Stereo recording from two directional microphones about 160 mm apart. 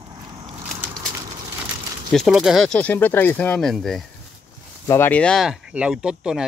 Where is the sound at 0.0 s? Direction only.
25° right (ahead or behind).